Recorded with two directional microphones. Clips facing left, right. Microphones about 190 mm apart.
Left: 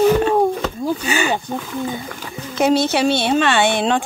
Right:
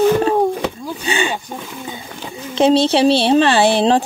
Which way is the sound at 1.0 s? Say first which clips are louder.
Left 1 dB; 25° right (ahead or behind).